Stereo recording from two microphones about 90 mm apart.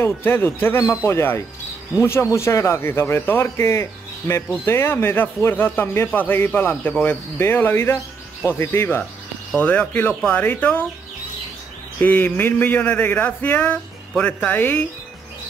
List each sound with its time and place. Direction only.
0.0 s speech: 25° left (ahead or behind)
12.0 s speech: 20° left (ahead or behind)